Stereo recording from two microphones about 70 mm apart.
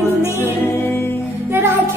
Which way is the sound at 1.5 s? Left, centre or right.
Right.